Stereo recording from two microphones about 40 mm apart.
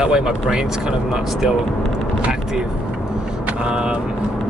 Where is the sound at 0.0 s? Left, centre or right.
Right.